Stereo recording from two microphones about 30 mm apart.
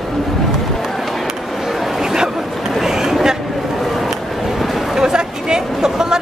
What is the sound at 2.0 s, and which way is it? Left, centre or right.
Chatter, centre.